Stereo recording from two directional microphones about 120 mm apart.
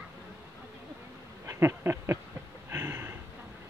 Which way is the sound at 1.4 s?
20° right (ahead or behind).